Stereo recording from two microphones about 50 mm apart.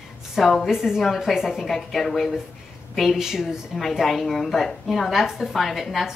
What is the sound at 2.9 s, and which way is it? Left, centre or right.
Speech, centre.